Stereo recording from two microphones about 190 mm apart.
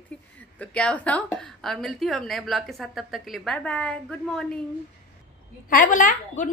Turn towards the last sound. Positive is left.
turn(degrees=45)  # may be behind; listen again after turning